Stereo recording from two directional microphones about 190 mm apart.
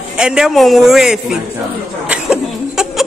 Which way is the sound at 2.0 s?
5° right (ahead or behind).